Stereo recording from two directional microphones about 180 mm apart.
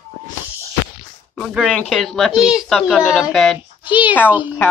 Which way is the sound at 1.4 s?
5° left (ahead or behind).